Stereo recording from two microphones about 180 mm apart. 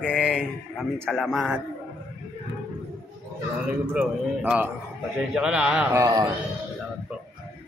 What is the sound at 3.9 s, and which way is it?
A man's voice, 5° right (ahead or behind).